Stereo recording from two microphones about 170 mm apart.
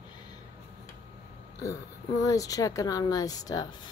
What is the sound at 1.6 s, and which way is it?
A woman's voice, 20° left (ahead or behind).